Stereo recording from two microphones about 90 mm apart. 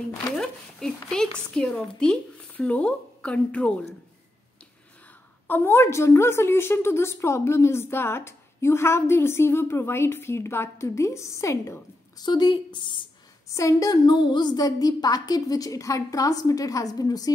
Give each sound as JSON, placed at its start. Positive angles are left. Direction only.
{"t": 0.4, "sound": "a woman's voice", "side_deg": 5}
{"t": 5.5, "sound": "a woman's voice", "side_deg": 25}
{"t": 12.2, "sound": "speech", "side_deg": 55}
{"t": 13.5, "sound": "a woman's voice", "side_deg": 35}
{"t": 14.0, "sound": "a woman's voice", "side_deg": 60}